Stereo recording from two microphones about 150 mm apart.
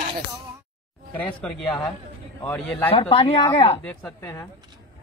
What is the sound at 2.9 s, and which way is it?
Speech, 35° left (ahead or behind).